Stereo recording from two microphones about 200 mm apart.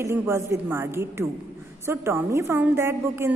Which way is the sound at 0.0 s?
15° right (ahead or behind).